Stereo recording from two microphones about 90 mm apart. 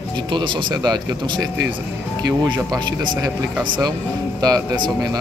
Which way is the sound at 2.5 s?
50° right (ahead or behind).